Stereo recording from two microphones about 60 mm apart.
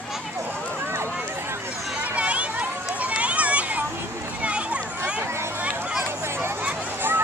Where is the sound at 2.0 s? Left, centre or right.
Right.